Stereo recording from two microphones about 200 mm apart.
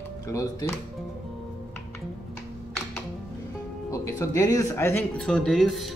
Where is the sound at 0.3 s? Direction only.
15° left (ahead or behind).